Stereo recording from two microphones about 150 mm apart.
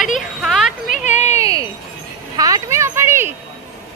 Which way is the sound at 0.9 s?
50° left (ahead or behind).